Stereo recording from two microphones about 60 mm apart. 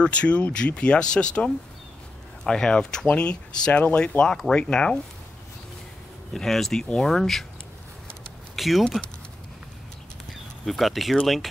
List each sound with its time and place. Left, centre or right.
0.0 s speech: centre
6.3 s speech: centre
8.5 s speech: centre
10.6 s speech: centre